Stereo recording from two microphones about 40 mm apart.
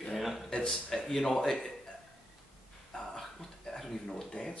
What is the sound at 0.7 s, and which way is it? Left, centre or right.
Speech, centre.